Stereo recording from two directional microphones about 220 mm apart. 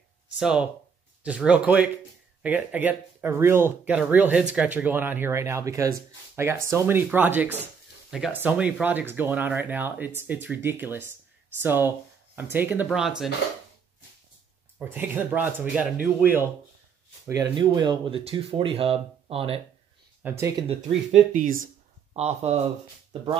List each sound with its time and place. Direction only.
0.4 s speech: 5° right (ahead or behind)
14.8 s speech: 10° right (ahead or behind)
17.3 s speech: 15° right (ahead or behind)
20.2 s speech: 10° right (ahead or behind)
20.6 s speech: 30° right (ahead or behind)